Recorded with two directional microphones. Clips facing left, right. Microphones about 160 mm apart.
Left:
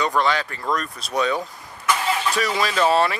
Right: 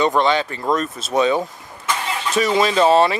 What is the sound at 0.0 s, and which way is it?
Speech, 25° right (ahead or behind).